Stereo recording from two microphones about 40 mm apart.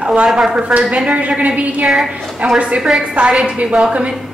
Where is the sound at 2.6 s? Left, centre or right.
Right.